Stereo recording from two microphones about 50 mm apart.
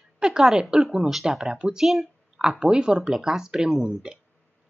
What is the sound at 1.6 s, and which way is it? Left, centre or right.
Speech, centre.